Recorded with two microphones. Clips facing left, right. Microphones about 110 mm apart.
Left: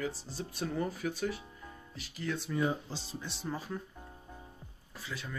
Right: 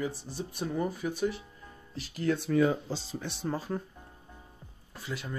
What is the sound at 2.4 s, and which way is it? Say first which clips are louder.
Speech: right 6 dB; 90° right.